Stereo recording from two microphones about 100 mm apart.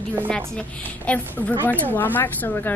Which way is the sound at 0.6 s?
15° left (ahead or behind).